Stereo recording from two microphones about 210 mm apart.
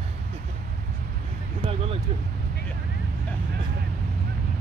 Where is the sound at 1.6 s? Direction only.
25° right (ahead or behind).